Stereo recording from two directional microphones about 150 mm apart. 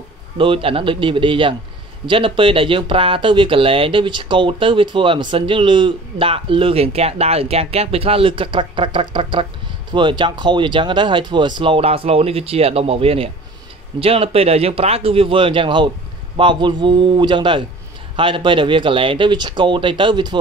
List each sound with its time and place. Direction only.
0.4 s speech: 35° right (ahead or behind)